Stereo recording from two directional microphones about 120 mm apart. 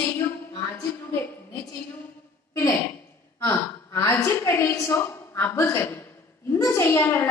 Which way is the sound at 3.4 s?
25° left (ahead or behind).